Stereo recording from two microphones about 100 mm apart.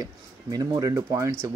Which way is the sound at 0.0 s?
40° right (ahead or behind).